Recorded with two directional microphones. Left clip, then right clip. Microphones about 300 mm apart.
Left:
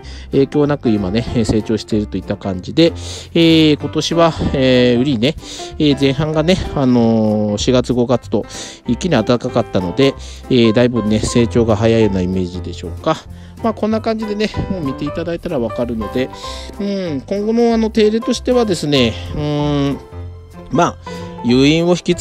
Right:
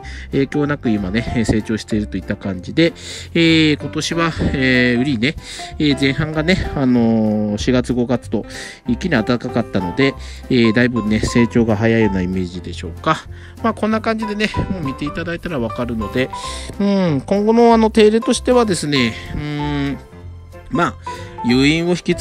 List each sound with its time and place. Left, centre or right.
0.3 s speech: centre
7.2 s speech: right
7.5 s speech: centre
8.9 s speech: centre